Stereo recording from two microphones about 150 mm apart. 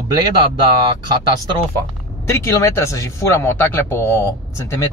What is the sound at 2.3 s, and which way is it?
Speech, 20° left (ahead or behind).